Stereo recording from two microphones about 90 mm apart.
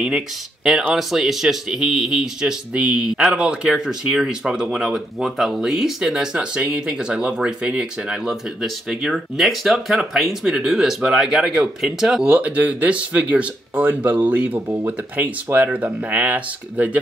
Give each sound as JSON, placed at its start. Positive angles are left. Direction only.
{"t": 0.9, "sound": "speech", "side_deg": 0}